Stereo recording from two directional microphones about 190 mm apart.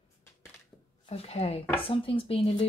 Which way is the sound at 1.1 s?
35° left (ahead or behind).